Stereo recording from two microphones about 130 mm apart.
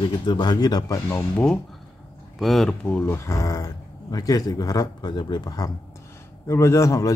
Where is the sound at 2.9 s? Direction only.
20° left (ahead or behind).